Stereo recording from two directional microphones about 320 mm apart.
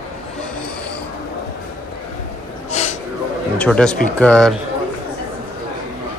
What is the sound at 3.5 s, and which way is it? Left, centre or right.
Speech, centre.